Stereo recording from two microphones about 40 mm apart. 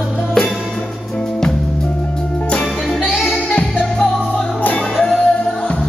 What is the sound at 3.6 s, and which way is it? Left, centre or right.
Music, left.